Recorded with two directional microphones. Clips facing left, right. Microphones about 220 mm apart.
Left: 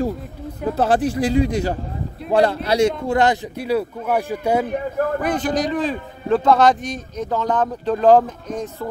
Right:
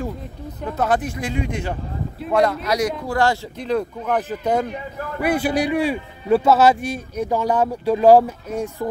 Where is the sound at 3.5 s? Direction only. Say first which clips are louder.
Left 1 dB; 10° left (ahead or behind).